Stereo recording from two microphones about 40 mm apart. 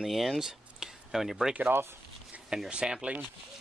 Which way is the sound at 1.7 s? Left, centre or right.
Right.